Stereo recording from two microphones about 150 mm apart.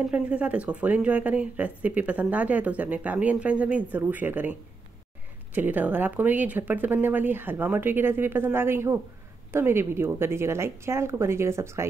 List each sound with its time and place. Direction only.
0.1 s speech: 10° right (ahead or behind)